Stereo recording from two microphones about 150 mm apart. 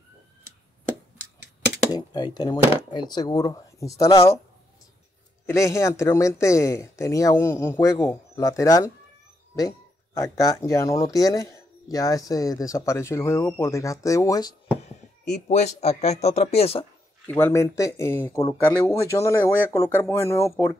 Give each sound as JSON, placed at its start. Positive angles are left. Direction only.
{"t": 1.9, "sound": "speech", "side_deg": 30}
{"t": 5.5, "sound": "speech", "side_deg": 20}
{"t": 15.2, "sound": "speech", "side_deg": 50}
{"t": 17.3, "sound": "speech", "side_deg": 15}